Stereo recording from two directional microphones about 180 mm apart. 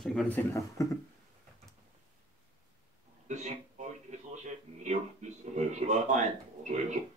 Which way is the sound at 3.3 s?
40° right (ahead or behind).